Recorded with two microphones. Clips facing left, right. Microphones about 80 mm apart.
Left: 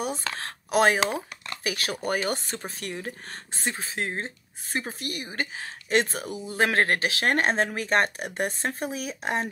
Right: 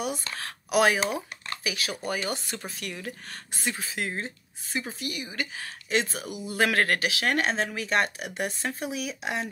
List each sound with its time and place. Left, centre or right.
0.4 s a sound: left
1.6 s speech: left
4.7 s a woman's voice: left